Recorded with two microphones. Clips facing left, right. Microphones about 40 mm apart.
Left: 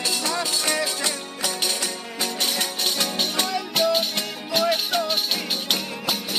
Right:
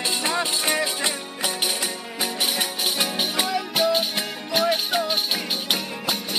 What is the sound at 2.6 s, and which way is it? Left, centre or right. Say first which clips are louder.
Music: even; centre.